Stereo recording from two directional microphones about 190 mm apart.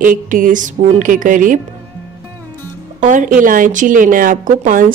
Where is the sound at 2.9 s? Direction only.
40° right (ahead or behind).